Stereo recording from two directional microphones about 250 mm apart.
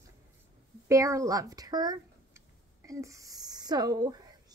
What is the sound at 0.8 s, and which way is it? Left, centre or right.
Speech, centre.